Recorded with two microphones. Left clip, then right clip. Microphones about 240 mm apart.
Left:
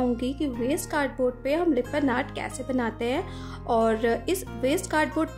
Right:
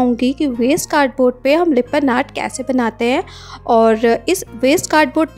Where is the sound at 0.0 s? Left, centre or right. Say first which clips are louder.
Right 11 dB; right.